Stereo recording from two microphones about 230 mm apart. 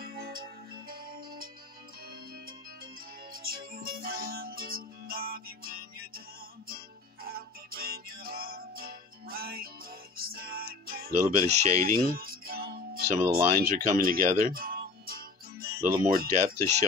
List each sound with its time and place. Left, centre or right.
0.0 s music: right
3.4 s music: right
7.2 s music: right
16.3 s speech: right